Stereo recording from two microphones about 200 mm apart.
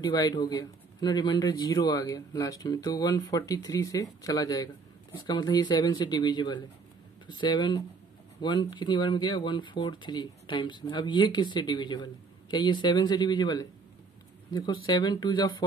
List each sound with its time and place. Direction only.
0.0 s speech: 20° left (ahead or behind)